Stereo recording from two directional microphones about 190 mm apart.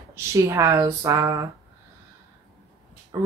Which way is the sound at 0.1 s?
15° right (ahead or behind).